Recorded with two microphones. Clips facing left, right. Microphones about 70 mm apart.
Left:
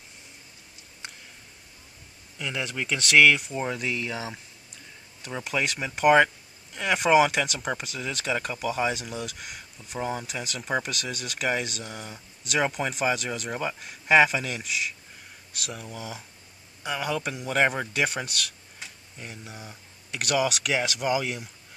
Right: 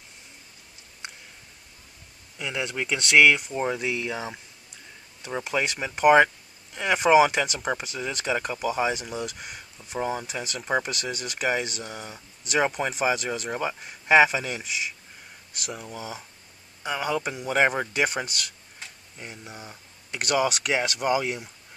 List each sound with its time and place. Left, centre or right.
2.3 s speech: centre
5.5 s speech: centre
9.2 s speech: centre
16.0 s speech: centre
16.8 s speech: centre
19.6 s a sound: centre
20.2 s speech: centre